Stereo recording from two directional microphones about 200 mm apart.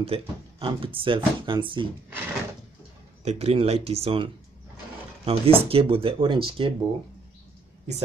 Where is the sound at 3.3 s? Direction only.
30° right (ahead or behind).